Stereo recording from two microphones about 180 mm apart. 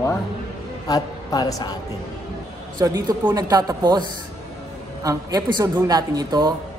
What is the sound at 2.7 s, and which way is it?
Speech, 20° right (ahead or behind).